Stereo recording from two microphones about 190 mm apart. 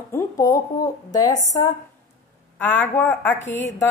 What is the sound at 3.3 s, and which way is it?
Speech, 75° left (ahead or behind).